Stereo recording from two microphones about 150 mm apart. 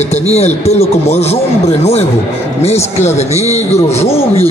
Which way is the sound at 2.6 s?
45° left (ahead or behind).